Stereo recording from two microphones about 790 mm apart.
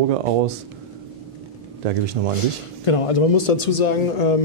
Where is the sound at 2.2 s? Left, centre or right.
Right.